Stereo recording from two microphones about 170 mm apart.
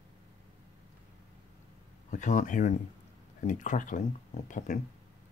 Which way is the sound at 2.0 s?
45° left (ahead or behind).